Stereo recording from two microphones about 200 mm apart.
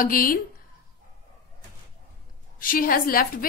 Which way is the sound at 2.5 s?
45° left (ahead or behind).